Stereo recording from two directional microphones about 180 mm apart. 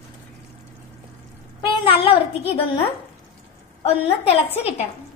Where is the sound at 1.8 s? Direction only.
30° left (ahead or behind).